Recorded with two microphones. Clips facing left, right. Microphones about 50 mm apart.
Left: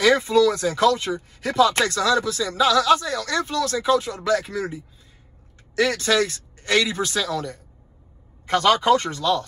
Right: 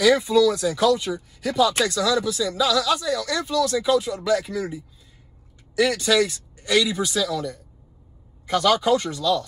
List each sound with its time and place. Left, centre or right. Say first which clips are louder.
0.0 s speech: even; left